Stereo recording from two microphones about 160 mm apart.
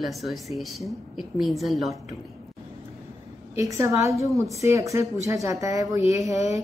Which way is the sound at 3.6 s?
20° right (ahead or behind).